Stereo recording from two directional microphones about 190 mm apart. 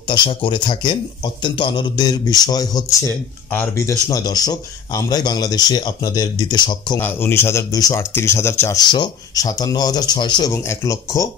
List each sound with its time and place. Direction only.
0.1 s speech: 25° left (ahead or behind)
7.0 s speech: 10° left (ahead or behind)